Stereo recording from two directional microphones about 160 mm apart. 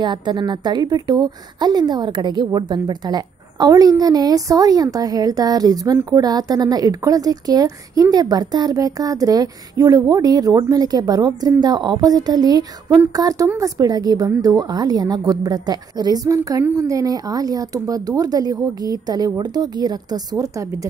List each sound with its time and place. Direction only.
0.0 s a woman's voice: 30° right (ahead or behind)